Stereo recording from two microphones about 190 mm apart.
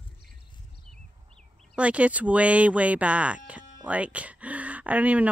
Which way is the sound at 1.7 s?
5° right (ahead or behind).